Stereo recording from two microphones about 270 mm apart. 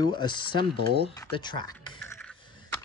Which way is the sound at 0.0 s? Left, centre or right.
Centre.